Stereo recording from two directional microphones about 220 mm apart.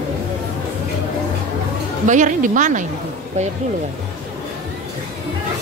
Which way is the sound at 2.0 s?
35° right (ahead or behind).